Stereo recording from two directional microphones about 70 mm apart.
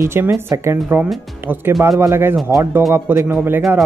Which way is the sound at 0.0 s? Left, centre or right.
Right.